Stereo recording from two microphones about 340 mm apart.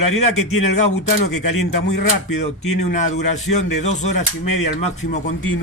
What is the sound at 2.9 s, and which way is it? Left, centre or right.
Speech, left.